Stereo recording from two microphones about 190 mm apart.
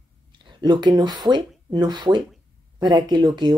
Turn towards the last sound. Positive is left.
turn(degrees=-25)  # may be behind; listen again after turning